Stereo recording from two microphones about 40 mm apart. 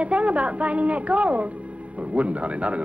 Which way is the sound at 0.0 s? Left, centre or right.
Right.